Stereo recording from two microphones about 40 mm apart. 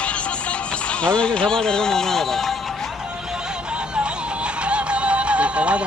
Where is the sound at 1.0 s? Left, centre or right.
Left.